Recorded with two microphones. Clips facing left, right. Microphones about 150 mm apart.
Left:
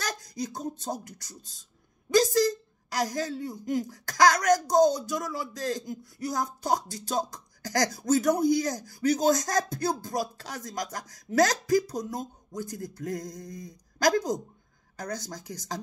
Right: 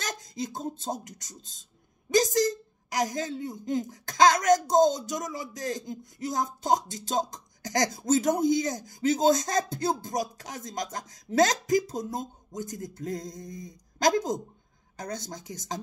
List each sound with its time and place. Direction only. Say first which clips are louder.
0.0 s speech: left 1 dB; 20° right (ahead or behind)